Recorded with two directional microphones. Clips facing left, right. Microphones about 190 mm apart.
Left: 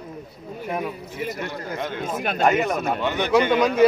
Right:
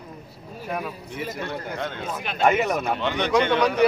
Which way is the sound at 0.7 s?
20° left (ahead or behind).